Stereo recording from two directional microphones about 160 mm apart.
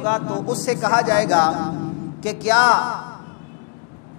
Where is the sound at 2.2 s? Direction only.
10° left (ahead or behind).